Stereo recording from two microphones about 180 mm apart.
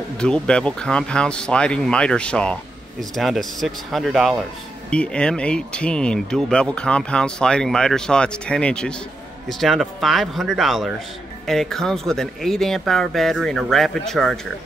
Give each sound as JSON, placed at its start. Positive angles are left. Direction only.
{"t": 0.2, "sound": "speech", "side_deg": 5}